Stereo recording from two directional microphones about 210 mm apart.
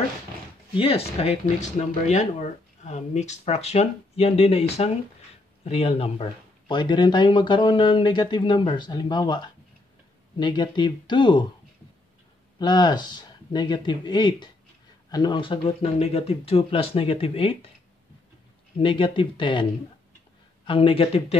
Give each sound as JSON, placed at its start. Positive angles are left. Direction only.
{"t": 0.7, "sound": "speech", "side_deg": 25}
{"t": 12.5, "sound": "speech", "side_deg": 20}
{"t": 18.8, "sound": "speech", "side_deg": 25}